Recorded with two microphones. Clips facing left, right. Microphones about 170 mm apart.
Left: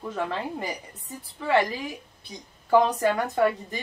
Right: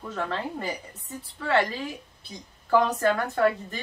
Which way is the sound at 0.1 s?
10° left (ahead or behind).